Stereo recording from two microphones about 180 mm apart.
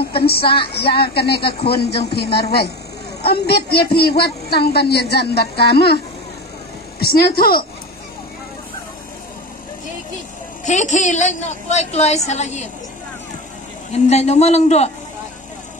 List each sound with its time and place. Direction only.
0.2 s speech: 60° left (ahead or behind)
7.0 s speech: 60° left (ahead or behind)
10.6 s a woman's voice: 40° left (ahead or behind)
13.9 s a woman's voice: 40° left (ahead or behind)